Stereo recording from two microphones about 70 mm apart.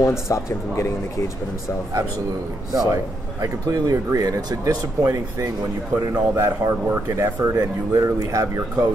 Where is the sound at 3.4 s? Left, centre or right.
Right.